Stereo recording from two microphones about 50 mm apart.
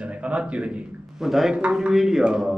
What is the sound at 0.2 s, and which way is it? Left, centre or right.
Speech, right.